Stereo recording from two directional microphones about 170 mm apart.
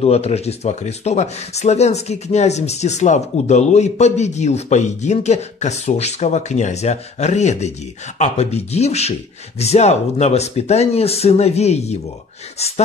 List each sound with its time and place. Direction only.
0.0 s speech: 40° left (ahead or behind)